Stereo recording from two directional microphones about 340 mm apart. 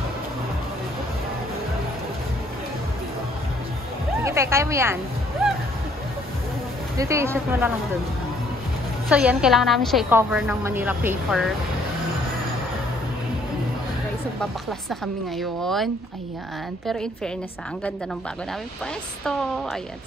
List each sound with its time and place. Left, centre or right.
4.2 s speech: centre
5.4 s music: centre
7.0 s speech: centre
9.1 s a woman's voice: centre
14.4 s a woman's voice: centre